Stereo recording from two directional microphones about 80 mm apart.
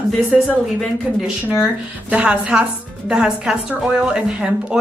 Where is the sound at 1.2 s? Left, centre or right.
Centre.